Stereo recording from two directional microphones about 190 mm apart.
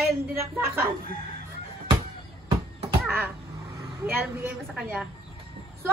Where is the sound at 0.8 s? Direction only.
50° right (ahead or behind).